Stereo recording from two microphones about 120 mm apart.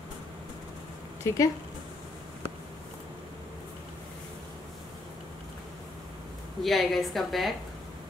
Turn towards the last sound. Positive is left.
turn(degrees=0)  # may be behind; listen again after turning